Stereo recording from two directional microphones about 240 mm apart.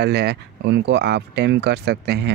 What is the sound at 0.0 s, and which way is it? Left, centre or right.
Speech, right.